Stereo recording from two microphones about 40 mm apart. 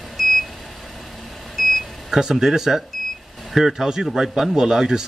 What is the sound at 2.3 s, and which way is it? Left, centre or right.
A man's voice, centre.